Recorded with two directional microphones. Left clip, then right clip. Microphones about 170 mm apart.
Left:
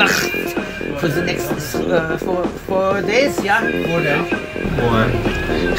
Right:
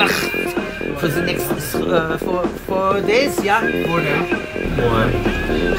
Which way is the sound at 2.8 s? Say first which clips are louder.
Right 1 dB; centre (ahead or behind).